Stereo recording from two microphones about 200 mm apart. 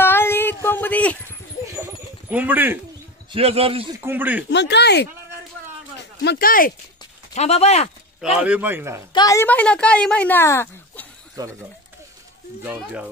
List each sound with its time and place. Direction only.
0.0 s a sound: 10° left (ahead or behind)
1.8 s dog: 10° right (ahead or behind)
3.3 s a man's voice: 30° right (ahead or behind)
4.0 s speech: 10° right (ahead or behind)
4.5 s speech: 60° left (ahead or behind)
5.9 s a sound: 55° left (ahead or behind)
7.3 s speech: 30° left (ahead or behind)
8.2 s speech: 5° right (ahead or behind)
9.1 s a woman's voice: 15° left (ahead or behind)
11.4 s a man's voice: 20° right (ahead or behind)
12.6 s speech: 5° right (ahead or behind)